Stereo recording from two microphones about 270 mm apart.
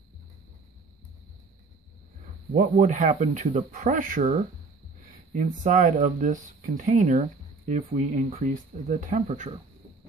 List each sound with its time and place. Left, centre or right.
2.5 s speech: right